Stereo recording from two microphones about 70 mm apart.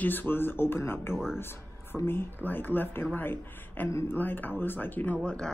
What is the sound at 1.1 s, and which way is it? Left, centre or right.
Speech, centre.